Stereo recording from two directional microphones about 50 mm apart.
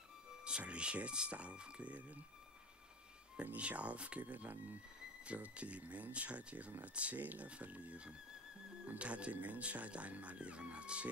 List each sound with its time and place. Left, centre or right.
0.4 s speech: right
3.3 s speech: right
5.2 s speech: right